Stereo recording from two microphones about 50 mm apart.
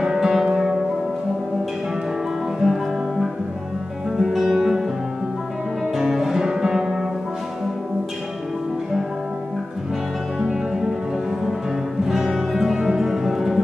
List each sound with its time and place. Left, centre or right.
0.0 s music: centre
2.6 s music: centre
5.9 s music: centre
10.4 s music: centre
12.1 s music: centre